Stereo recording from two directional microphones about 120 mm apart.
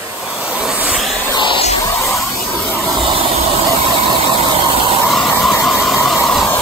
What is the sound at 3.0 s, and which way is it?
Vehicle, 50° right (ahead or behind).